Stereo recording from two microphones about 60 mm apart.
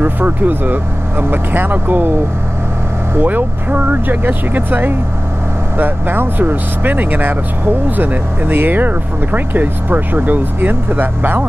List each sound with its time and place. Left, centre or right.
0.0 s speech: right
3.2 s speech: right